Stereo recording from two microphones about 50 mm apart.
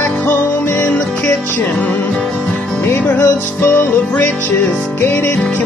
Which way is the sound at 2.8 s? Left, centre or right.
Left.